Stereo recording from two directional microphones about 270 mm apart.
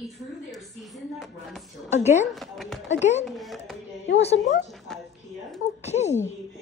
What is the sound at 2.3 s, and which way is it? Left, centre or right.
Speech, centre.